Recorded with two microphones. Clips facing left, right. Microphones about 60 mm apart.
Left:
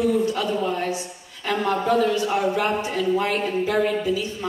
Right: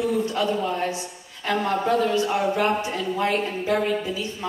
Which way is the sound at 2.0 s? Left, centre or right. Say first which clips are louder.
Left 1 dB; right.